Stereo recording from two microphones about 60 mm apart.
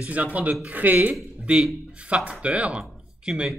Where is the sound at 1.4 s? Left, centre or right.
Centre.